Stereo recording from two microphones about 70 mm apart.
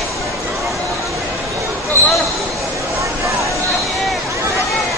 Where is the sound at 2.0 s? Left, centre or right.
Right.